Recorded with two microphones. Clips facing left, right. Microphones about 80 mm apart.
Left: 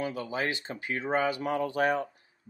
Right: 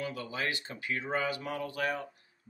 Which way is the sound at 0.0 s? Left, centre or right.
Left.